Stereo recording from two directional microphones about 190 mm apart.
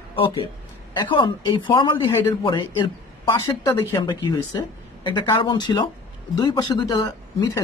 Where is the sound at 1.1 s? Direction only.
25° left (ahead or behind).